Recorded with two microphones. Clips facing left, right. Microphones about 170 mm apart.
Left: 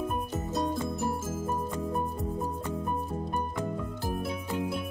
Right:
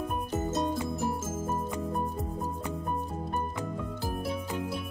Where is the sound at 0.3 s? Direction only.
Centre (ahead or behind).